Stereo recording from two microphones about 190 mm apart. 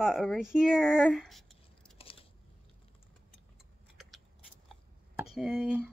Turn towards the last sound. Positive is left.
turn(degrees=-5)  # may be behind; listen again after turning